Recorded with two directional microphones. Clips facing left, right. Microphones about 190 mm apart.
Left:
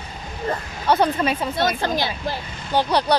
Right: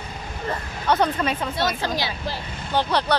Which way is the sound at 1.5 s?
50° left (ahead or behind).